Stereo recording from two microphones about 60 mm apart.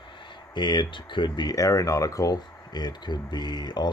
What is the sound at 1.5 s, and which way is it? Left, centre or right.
Speech, left.